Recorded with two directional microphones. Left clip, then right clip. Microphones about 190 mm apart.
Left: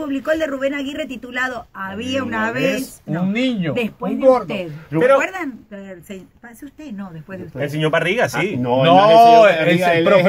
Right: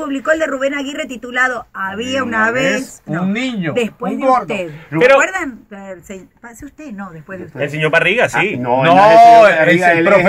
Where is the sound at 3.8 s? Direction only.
5° left (ahead or behind).